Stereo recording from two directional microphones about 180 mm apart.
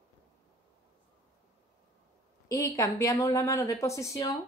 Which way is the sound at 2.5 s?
20° left (ahead or behind).